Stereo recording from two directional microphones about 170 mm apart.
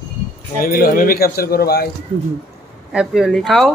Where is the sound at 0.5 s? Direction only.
55° left (ahead or behind).